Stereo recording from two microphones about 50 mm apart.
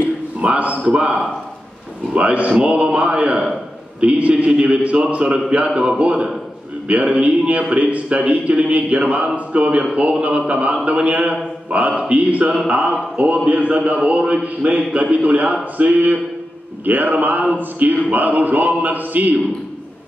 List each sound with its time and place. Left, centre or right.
0.4 s speech: right